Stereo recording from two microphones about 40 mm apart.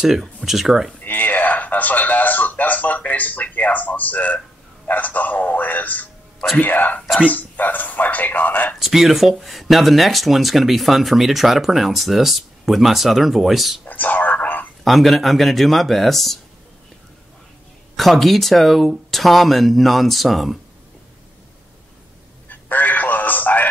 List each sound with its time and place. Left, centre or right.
0.4 s speech: centre
1.0 s a man's voice: left
8.7 s speech: centre
13.8 s speech: left
14.4 s telephone: left
14.9 s speech: centre
17.9 s speech: centre
22.5 s telephone: left